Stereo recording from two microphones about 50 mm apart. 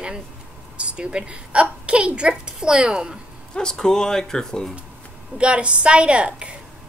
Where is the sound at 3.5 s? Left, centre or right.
Centre.